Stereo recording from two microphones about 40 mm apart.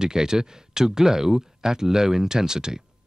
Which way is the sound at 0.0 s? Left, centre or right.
Centre.